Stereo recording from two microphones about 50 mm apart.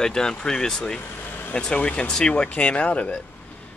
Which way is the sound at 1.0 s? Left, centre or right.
Left.